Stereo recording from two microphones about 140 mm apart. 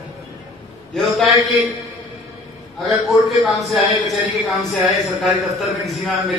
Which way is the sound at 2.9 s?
Centre (ahead or behind).